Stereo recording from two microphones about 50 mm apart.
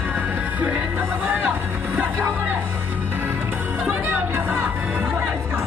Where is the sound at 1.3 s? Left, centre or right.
Right.